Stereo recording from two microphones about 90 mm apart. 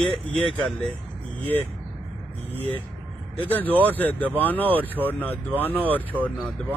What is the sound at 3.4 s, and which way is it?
Speech, 20° left (ahead or behind).